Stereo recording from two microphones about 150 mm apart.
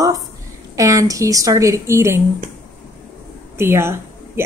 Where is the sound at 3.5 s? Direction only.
15° right (ahead or behind).